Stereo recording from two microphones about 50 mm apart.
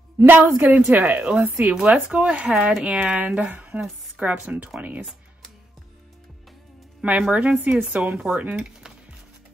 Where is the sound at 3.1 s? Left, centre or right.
Right.